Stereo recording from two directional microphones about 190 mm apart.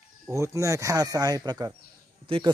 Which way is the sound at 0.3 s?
15° right (ahead or behind).